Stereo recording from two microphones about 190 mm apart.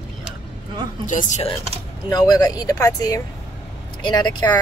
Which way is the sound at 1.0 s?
40° left (ahead or behind).